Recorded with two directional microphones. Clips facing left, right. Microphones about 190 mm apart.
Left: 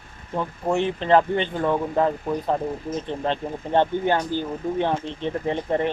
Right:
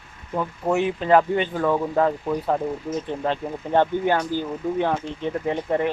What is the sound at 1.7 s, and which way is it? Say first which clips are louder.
Speech: right 1 dB; 5° left (ahead or behind).